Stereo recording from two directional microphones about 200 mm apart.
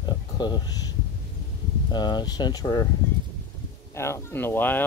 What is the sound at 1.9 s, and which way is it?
Speech, 20° left (ahead or behind).